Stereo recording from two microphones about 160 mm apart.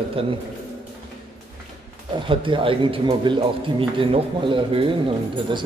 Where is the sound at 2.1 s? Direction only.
30° right (ahead or behind).